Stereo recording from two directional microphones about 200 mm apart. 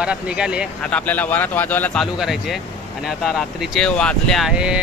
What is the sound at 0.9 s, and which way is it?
Speech, 10° left (ahead or behind).